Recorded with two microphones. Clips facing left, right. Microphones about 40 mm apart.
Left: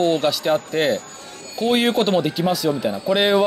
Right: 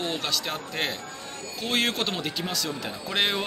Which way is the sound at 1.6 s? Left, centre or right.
Centre.